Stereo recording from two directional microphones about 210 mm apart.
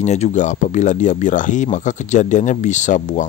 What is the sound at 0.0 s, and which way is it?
Speech, 35° left (ahead or behind).